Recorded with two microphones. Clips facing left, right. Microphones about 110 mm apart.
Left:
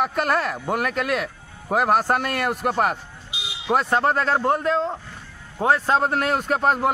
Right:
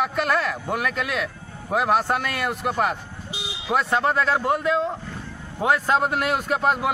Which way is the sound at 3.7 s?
40° left (ahead or behind).